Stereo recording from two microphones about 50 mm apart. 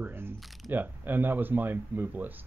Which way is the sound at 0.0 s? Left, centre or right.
Right.